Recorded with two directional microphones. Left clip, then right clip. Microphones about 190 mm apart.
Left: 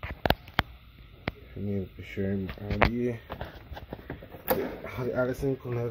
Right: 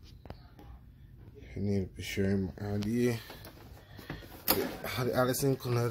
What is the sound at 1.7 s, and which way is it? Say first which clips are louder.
Speech: right 1 dB; 15° right (ahead or behind).